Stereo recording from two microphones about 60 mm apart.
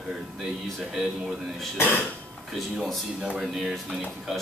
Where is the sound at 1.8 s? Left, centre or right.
Left.